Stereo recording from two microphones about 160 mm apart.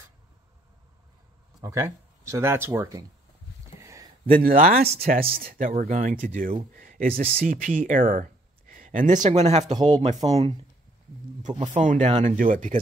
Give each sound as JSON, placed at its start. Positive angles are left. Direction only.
{"t": 1.6, "sound": "speech", "side_deg": -20}
{"t": 3.8, "sound": "a sound", "side_deg": -20}
{"t": 4.4, "sound": "speech", "side_deg": -65}
{"t": 11.7, "sound": "speech", "side_deg": -50}